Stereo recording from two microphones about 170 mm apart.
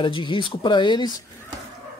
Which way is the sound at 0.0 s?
30° left (ahead or behind).